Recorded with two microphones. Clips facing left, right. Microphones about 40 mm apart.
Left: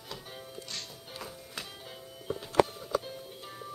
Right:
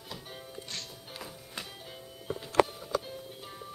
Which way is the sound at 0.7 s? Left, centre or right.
Centre.